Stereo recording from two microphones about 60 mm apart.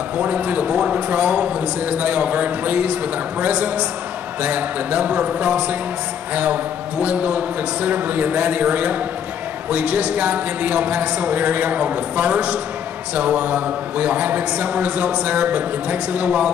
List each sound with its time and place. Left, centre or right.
0.2 s a man's voice: right